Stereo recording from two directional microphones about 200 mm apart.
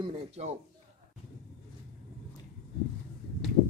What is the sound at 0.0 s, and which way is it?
Speech, 35° right (ahead or behind).